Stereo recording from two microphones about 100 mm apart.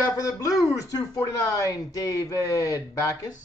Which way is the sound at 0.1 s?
35° left (ahead or behind).